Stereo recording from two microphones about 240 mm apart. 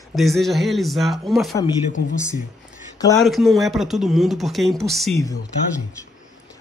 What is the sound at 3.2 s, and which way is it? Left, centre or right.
A man's voice, centre.